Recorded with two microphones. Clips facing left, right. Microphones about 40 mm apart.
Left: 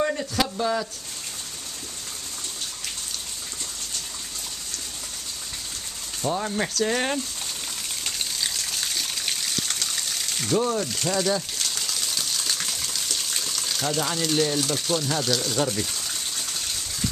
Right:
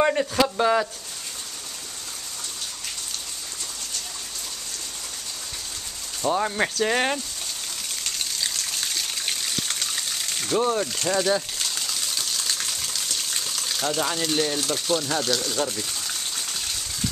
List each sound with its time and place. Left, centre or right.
0.2 s speech: right
6.2 s speech: centre
8.0 s gush: centre
10.6 s speech: centre
10.9 s speech: centre
11.5 s gush: centre